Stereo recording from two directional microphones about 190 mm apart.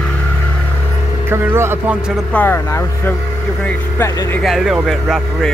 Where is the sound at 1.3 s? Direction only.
15° right (ahead or behind).